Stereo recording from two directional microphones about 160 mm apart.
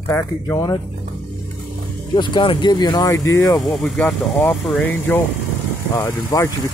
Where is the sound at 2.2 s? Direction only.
30° left (ahead or behind).